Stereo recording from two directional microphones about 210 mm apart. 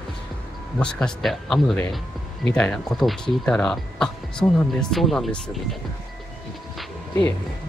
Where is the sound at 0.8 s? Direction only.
5° left (ahead or behind).